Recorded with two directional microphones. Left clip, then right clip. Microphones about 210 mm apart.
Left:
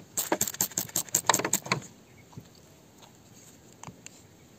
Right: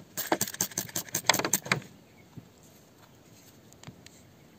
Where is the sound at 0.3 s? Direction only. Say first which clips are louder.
Right 1 dB; 10° right (ahead or behind).